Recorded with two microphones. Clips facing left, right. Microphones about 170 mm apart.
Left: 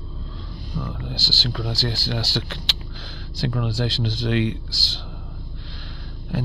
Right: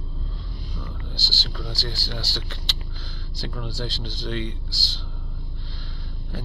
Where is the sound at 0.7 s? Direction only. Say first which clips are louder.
Left 9 dB; 75° left (ahead or behind).